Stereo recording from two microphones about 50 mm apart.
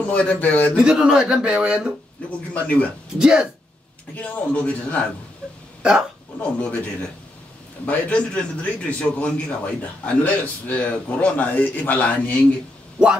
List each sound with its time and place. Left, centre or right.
0.0 s a man's voice: left
0.8 s speech: centre
2.2 s a man's voice: left
3.2 s speech: centre
4.1 s a man's voice: left
5.8 s hiccup: centre
6.4 s a man's voice: left